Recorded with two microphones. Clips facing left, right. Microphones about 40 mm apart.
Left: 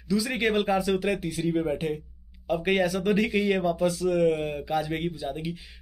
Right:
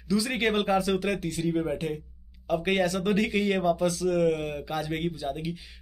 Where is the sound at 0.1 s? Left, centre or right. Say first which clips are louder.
Left 1 dB; centre.